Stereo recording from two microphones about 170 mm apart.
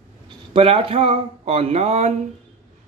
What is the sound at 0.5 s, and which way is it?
Speech, 35° right (ahead or behind).